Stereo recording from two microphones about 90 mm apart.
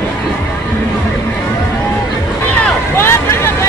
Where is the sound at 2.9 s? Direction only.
30° left (ahead or behind).